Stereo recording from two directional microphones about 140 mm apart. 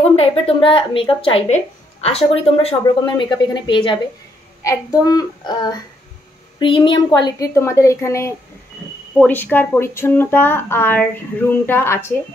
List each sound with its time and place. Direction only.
0.1 s speech: 45° left (ahead or behind)
4.6 s child singing: 25° left (ahead or behind)
6.6 s speech: 35° left (ahead or behind)
7.5 s child singing: 20° left (ahead or behind)
9.2 s speech: 15° left (ahead or behind)